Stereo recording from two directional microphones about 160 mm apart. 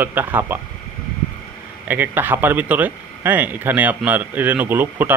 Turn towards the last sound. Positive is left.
turn(degrees=-10)  # may be behind; listen again after turning